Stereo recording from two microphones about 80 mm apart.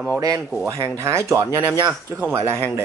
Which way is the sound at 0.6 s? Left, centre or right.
Right.